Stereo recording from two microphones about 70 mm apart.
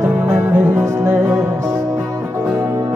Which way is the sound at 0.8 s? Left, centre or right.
Right.